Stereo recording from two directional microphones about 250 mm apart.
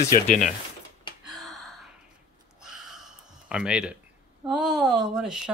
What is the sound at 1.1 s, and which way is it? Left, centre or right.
Gasp, centre.